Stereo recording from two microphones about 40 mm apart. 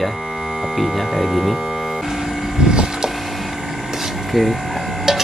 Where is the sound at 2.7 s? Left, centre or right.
Centre.